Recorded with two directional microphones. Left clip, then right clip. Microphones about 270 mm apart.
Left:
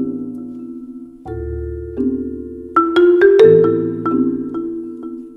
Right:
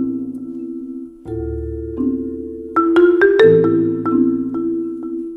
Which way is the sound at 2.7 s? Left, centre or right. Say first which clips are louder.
Left 1 dB; centre.